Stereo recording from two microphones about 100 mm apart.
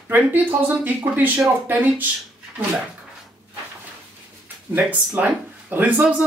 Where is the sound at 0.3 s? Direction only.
20° right (ahead or behind).